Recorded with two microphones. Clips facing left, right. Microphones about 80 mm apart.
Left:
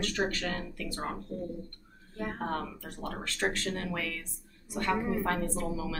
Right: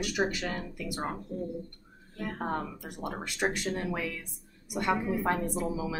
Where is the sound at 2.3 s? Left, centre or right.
Centre.